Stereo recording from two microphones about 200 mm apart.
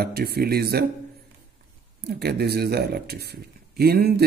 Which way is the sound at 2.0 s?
55° right (ahead or behind).